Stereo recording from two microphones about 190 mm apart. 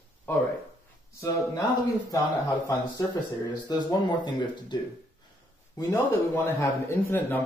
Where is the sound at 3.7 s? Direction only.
20° left (ahead or behind).